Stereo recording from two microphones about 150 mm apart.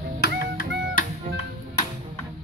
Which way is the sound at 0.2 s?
75° left (ahead or behind).